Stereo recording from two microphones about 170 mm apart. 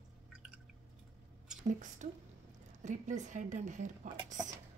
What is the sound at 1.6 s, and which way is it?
Speech, 45° right (ahead or behind).